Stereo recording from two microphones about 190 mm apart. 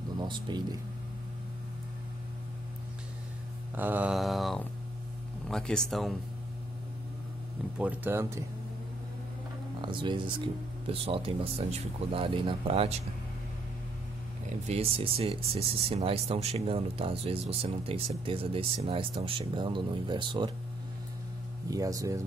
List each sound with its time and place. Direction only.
0.2 s speech: 25° right (ahead or behind)
3.7 s mantra: 10° right (ahead or behind)
7.8 s speech: 10° right (ahead or behind)
9.8 s speech: 25° right (ahead or behind)
14.7 s speech: 30° right (ahead or behind)
21.6 s speech: 20° right (ahead or behind)